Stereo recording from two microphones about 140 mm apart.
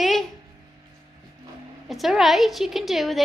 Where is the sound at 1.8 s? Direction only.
Centre (ahead or behind).